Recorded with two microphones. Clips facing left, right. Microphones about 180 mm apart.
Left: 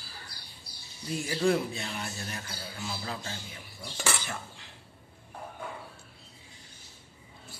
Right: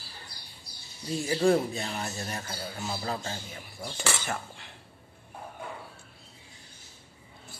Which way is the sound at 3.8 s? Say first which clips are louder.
Right 2 dB; 55° right (ahead or behind).